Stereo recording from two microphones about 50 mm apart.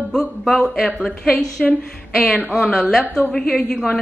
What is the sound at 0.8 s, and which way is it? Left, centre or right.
Speech, centre.